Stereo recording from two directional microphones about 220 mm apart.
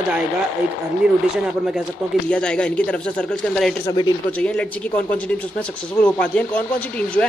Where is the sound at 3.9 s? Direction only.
20° left (ahead or behind).